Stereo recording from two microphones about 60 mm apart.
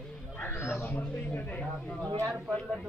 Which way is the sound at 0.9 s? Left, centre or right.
Left.